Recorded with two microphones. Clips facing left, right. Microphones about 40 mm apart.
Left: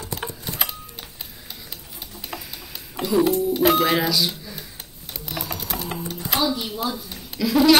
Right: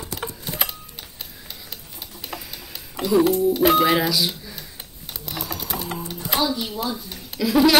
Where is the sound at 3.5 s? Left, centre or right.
Centre.